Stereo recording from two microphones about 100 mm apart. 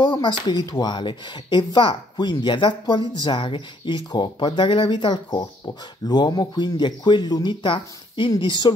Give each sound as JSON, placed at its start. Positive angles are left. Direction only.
{"t": 0.0, "sound": "a woman's voice", "side_deg": 45}